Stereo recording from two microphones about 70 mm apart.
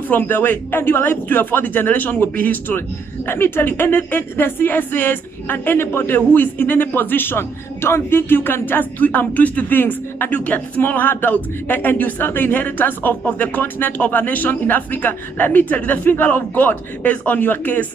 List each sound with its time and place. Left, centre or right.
0.1 s speech: left